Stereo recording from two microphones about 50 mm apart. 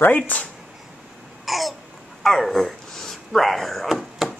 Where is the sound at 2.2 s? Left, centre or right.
Centre.